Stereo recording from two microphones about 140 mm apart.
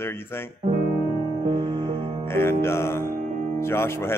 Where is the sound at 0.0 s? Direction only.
15° left (ahead or behind).